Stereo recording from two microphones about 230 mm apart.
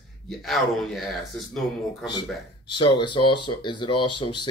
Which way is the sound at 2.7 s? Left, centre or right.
Centre.